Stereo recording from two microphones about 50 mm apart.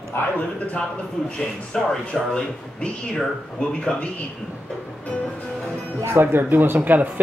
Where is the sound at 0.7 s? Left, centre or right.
Left.